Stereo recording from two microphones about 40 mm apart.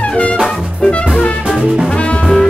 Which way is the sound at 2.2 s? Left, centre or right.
Centre.